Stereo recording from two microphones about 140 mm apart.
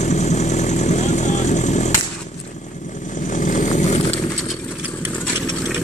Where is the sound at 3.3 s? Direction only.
65° left (ahead or behind).